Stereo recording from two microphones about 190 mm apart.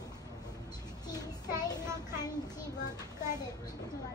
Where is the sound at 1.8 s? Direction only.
15° right (ahead or behind).